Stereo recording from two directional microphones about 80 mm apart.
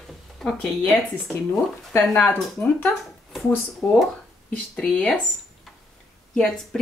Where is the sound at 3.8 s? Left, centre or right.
Left.